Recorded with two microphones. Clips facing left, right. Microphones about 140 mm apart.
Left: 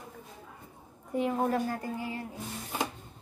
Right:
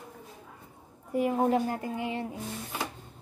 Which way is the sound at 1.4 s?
20° right (ahead or behind).